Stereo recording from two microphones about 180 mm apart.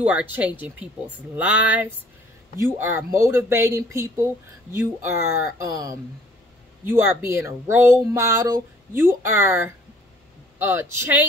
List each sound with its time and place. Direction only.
0.0 s a man's voice: 10° right (ahead or behind)